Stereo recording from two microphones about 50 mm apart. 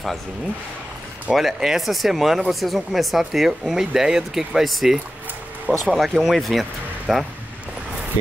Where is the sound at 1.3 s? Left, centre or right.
Centre.